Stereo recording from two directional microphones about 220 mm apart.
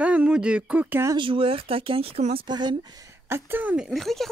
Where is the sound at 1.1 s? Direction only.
25° right (ahead or behind); by 4.3 s centre (ahead or behind).